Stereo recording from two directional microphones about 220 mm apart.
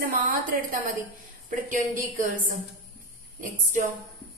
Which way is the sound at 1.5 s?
35° right (ahead or behind).